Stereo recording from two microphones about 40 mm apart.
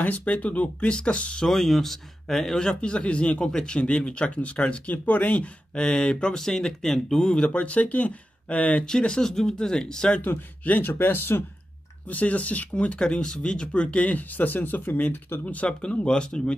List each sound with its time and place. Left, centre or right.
0.0 s speech: left
1.4 s speech: centre
2.5 s speech: left
7.5 s speech: left
8.8 s speech: centre
10.2 s speech: left
12.1 s speech: left
13.4 s speech: left
15.4 s speech: left
16.1 s speech: left